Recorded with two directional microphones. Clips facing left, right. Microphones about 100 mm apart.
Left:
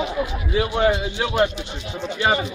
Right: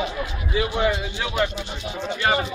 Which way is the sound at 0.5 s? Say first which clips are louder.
Left 3 dB; 45° left (ahead or behind).